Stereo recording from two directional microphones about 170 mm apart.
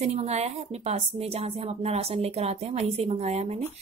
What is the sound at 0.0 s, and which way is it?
A woman's voice, 40° right (ahead or behind).